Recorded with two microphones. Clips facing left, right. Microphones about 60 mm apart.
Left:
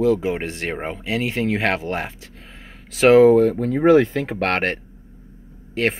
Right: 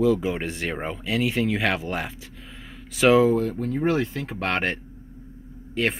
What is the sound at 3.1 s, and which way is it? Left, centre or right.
Speech, left.